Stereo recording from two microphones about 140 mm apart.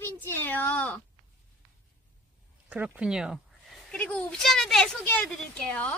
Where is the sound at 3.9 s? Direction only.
10° left (ahead or behind).